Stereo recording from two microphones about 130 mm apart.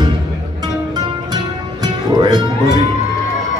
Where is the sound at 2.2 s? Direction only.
30° right (ahead or behind).